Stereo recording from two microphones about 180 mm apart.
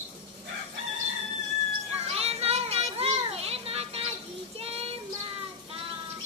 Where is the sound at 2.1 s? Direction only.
35° right (ahead or behind).